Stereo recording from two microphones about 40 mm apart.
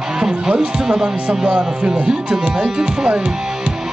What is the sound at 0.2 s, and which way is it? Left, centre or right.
Speech, centre.